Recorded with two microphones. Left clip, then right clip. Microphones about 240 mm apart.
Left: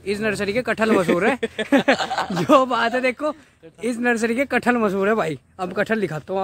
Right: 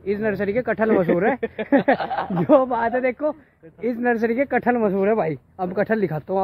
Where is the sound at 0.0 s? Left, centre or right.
Centre.